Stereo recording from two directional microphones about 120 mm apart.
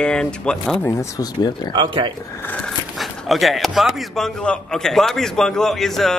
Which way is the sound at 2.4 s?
10° left (ahead or behind).